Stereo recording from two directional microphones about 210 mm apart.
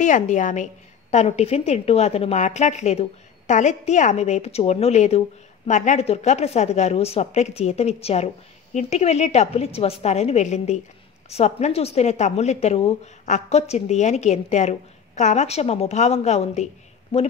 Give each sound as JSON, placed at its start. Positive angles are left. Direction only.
{"t": 0.0, "sound": "a woman's voice", "side_deg": 35}